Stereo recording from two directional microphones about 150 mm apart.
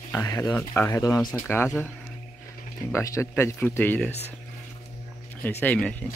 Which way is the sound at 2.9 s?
20° left (ahead or behind).